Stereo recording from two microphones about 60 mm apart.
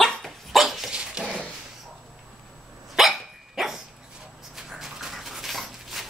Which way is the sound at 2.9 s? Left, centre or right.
Centre.